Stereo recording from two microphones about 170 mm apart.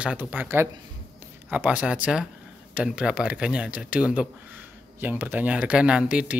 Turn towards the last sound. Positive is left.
turn(degrees=-5)  # may be behind; listen again after turning